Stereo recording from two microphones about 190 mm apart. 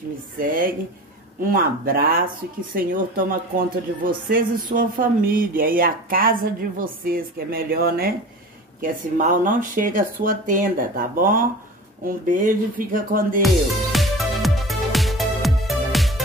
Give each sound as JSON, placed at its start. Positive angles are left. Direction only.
{"t": 0.4, "sound": "speech", "side_deg": -45}
{"t": 13.9, "sound": "music", "side_deg": 0}